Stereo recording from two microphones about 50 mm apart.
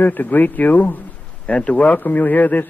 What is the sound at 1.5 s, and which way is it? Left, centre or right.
Speech, left.